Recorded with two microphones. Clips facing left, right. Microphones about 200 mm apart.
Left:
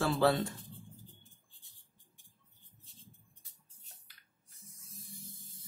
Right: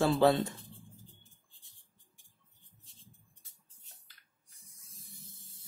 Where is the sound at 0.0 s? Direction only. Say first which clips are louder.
Right 3 dB; 25° right (ahead or behind).